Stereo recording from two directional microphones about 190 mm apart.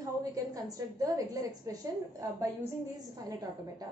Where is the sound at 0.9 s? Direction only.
15° right (ahead or behind).